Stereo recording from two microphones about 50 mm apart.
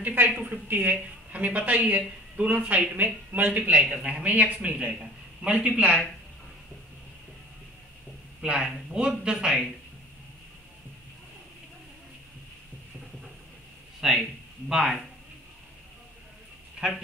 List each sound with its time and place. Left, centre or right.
0.0 s speech: right
3.5 s speech: right
8.4 s speech: centre
14.0 s a man's voice: centre